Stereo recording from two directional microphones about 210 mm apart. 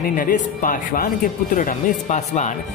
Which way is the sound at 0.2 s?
40° left (ahead or behind).